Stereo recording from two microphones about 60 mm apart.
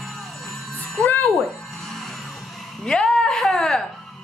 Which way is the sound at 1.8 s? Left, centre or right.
Centre.